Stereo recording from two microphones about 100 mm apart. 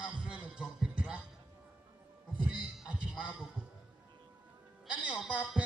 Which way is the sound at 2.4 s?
10° right (ahead or behind).